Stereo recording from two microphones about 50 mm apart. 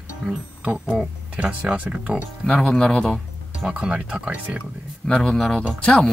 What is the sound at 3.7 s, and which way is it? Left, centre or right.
Speech, right.